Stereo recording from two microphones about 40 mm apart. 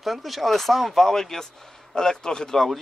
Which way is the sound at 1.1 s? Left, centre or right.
Centre.